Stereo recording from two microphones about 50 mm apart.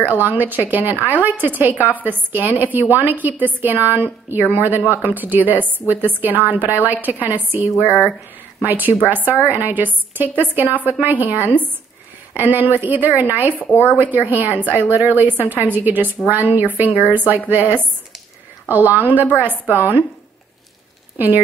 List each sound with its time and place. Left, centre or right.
0.0 s a woman's voice: right
8.7 s a woman's voice: right
21.2 s a woman's voice: right